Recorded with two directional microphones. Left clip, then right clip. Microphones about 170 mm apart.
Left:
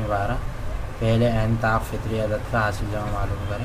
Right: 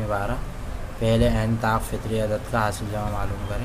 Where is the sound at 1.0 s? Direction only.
30° right (ahead or behind).